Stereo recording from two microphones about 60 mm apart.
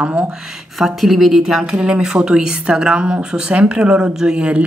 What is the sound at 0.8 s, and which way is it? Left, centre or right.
Speech, centre.